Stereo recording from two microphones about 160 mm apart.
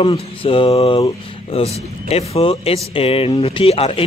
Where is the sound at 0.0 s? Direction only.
35° left (ahead or behind).